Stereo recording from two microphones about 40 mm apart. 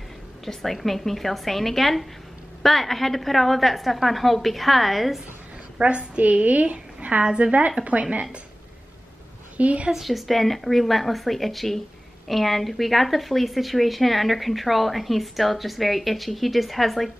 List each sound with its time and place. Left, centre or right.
0.5 s a woman's voice: centre
5.8 s a woman's voice: right
9.6 s a woman's voice: right
9.9 s speech: centre